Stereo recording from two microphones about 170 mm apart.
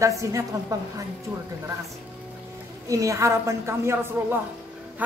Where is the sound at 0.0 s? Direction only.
20° right (ahead or behind).